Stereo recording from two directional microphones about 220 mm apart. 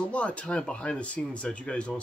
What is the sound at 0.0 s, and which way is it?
Speech, 5° left (ahead or behind).